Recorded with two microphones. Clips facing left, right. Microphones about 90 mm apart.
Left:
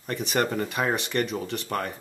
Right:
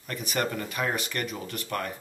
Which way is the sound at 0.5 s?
25° left (ahead or behind).